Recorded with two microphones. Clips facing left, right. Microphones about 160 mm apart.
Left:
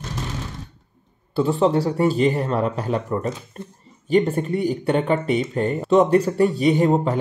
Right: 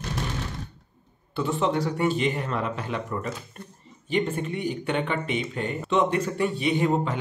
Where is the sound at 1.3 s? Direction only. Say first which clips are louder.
Left 7 dB; 35° left (ahead or behind).